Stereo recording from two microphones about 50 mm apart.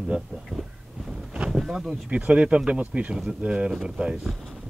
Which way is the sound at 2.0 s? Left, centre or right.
Right.